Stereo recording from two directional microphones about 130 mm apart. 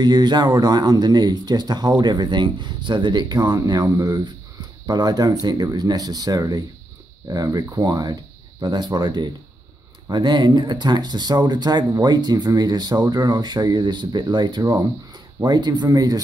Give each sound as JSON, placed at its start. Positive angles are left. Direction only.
{"t": 0.0, "sound": "speech", "side_deg": -35}